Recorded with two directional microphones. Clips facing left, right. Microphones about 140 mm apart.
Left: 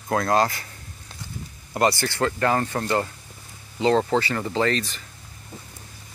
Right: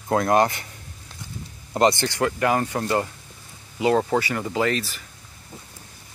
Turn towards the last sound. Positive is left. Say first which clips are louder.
# even
turn(degrees=-10)  # may be behind; listen again after turning